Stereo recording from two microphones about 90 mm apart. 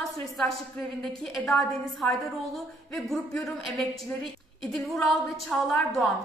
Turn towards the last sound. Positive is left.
turn(degrees=0)  # may be behind; listen again after turning